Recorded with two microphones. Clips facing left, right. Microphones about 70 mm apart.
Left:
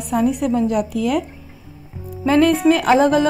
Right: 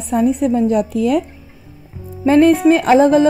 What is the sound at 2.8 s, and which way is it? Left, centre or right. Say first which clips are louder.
Speech: right 3 dB; right.